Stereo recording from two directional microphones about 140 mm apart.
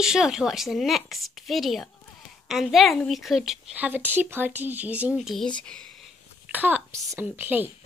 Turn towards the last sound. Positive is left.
turn(degrees=-15)  # may be behind; listen again after turning